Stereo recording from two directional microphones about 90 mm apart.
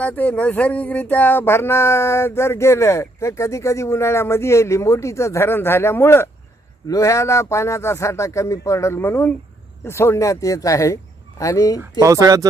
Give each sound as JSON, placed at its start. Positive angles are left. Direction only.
{"t": 0.0, "sound": "speech", "side_deg": 15}
{"t": 12.0, "sound": "speech", "side_deg": -40}